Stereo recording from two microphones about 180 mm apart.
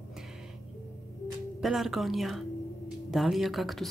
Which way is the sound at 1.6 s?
Centre (ahead or behind).